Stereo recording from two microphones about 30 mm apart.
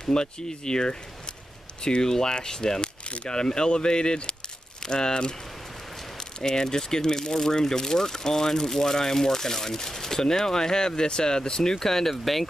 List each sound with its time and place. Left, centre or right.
0.0 s speech: left
6.4 s speech: left